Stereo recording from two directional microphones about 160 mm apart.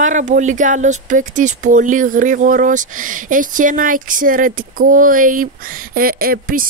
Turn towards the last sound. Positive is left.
turn(degrees=-65)  # may be behind; listen again after turning